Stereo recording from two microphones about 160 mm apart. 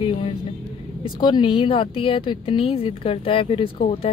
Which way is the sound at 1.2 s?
30° left (ahead or behind).